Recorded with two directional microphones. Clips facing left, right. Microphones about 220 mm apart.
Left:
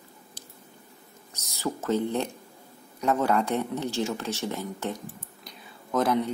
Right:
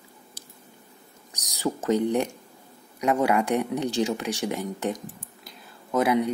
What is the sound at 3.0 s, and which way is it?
Speech, 10° right (ahead or behind).